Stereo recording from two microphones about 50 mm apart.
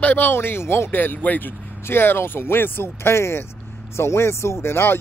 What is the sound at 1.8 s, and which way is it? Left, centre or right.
Speech, left.